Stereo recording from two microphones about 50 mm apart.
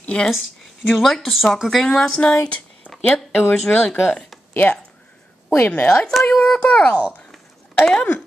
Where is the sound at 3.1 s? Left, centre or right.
Left.